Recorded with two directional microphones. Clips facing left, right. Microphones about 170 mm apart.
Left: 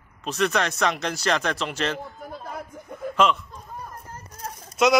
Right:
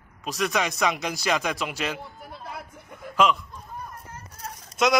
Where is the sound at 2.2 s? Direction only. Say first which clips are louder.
Left 3 dB; 45° left (ahead or behind).